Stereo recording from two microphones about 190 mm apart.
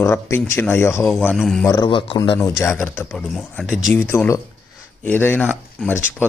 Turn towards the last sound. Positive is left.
turn(degrees=5)  # may be behind; listen again after turning